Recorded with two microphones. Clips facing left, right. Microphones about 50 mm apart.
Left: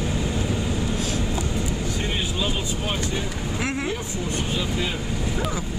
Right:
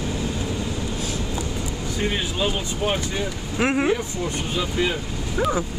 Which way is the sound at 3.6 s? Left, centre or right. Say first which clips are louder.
Right 7 dB; right.